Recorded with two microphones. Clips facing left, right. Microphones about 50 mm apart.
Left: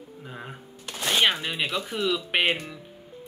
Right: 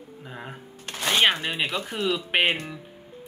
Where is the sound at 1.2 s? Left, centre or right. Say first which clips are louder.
Right 2 dB; centre.